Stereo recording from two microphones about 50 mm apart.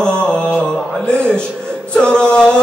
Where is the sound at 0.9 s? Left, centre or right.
Centre.